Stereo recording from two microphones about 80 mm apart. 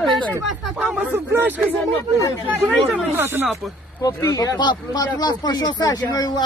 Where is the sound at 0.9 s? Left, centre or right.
Right.